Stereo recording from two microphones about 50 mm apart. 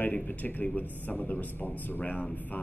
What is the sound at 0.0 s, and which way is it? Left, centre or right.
A man's voice, left.